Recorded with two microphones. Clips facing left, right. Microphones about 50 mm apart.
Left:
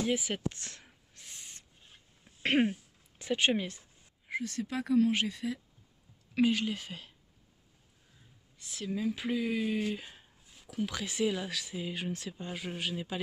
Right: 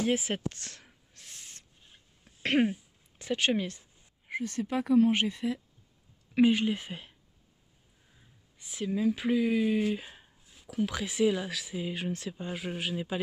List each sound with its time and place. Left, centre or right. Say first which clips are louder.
0.5 s a sound: even; centre
2.2 s throat clearing: right 1 dB; centre
2.7 s speech: right 3 dB; centre
4.4 s speech: right 4 dB; right
8.5 s speech: right 4 dB; centre